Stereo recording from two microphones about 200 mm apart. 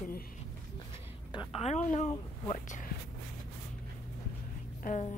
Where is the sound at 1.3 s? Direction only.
25° left (ahead or behind).